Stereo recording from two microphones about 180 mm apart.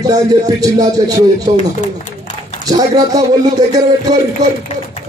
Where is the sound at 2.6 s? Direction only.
20° right (ahead or behind).